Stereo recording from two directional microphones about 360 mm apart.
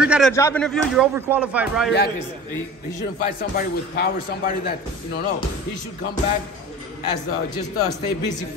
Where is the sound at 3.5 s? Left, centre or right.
Left.